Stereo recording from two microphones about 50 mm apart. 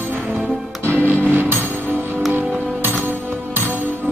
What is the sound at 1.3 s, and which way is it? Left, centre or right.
Music, right.